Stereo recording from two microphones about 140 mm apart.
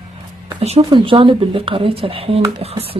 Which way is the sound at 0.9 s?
35° right (ahead or behind).